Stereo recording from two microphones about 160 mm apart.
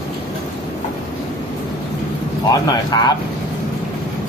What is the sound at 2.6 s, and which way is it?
Speech, 25° left (ahead or behind).